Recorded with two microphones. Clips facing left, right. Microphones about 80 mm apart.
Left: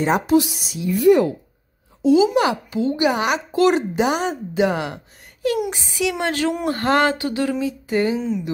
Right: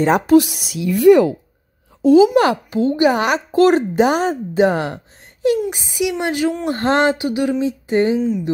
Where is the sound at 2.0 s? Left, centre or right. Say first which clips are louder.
Right 5 dB; right.